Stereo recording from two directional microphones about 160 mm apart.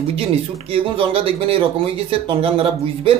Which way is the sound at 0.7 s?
35° right (ahead or behind).